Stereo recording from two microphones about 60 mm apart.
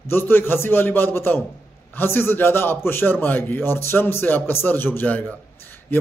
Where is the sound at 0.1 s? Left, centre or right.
Left.